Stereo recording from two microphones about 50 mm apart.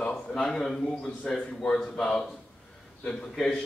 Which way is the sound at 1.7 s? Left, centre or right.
Centre.